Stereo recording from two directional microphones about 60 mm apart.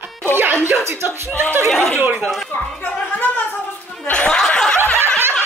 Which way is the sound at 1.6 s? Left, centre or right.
Centre.